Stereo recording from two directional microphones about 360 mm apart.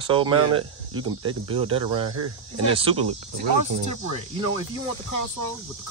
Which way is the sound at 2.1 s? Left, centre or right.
Right.